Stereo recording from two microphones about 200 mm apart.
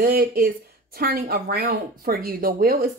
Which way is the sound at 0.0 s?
45° right (ahead or behind).